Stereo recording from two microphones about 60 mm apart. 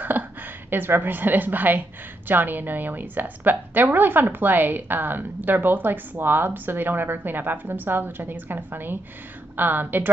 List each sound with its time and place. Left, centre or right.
0.0 s a woman's voice: right